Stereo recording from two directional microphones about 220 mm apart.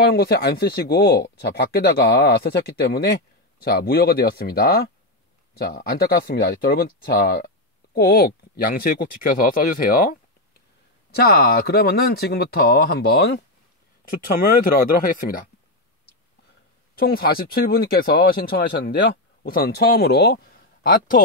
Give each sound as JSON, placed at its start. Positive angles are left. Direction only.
{"t": 0.0, "sound": "speech", "side_deg": 45}
{"t": 11.1, "sound": "speech", "side_deg": 45}
{"t": 16.9, "sound": "speech", "side_deg": 45}